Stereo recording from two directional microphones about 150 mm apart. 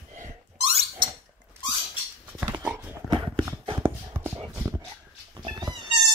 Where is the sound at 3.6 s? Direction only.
30° right (ahead or behind).